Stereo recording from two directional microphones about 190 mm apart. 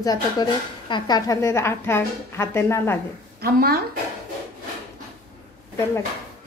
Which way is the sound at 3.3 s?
55° right (ahead or behind).